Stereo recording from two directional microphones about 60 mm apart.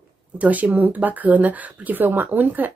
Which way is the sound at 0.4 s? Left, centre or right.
Right.